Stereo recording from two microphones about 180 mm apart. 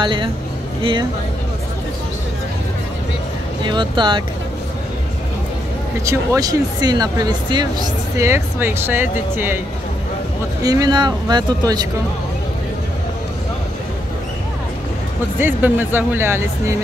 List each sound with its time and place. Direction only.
0.0 s speech: 25° right (ahead or behind)
3.6 s speech: 25° right (ahead or behind)
6.0 s speech: 20° right (ahead or behind)
10.6 s speech: 20° right (ahead or behind)
15.3 s speech: 10° right (ahead or behind)